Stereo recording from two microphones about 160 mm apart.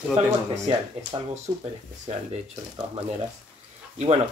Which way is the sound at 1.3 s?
45° right (ahead or behind).